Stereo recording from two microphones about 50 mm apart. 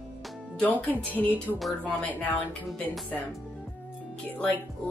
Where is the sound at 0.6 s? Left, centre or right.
Left.